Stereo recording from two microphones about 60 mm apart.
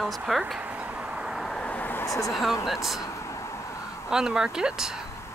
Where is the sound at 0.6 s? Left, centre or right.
Right.